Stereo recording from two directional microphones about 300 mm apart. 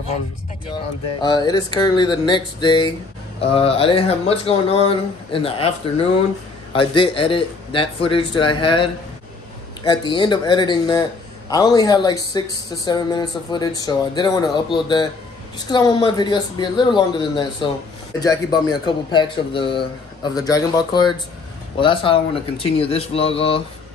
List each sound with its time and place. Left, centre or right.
1.2 s a man's voice: centre
6.7 s a man's voice: centre